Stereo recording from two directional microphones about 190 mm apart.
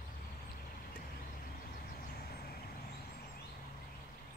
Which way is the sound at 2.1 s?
55° left (ahead or behind).